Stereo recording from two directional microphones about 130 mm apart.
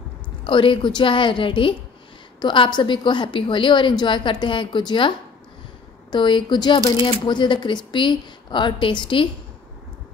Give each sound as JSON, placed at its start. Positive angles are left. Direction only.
{"t": 0.5, "sound": "speech", "side_deg": 40}
{"t": 6.1, "sound": "speech", "side_deg": 40}